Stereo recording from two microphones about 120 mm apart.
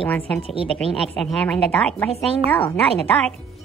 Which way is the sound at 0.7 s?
5° left (ahead or behind).